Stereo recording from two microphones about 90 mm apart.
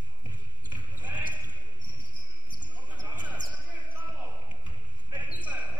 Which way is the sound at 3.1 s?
15° right (ahead or behind).